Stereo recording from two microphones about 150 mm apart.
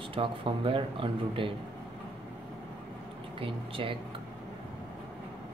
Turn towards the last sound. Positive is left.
turn(degrees=-35)  # may be behind; listen again after turning